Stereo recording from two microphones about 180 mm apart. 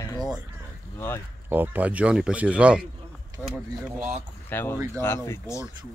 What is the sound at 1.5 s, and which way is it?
Speech, 10° right (ahead or behind).